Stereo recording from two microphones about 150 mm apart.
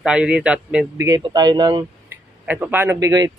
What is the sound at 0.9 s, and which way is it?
Speech, 25° right (ahead or behind).